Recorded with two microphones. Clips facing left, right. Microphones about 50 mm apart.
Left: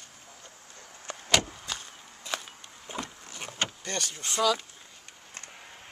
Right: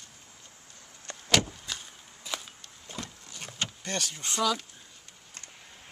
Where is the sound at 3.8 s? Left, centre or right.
Centre.